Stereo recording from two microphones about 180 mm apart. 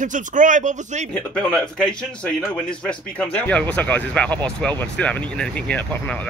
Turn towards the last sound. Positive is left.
turn(degrees=10)  # may be behind; listen again after turning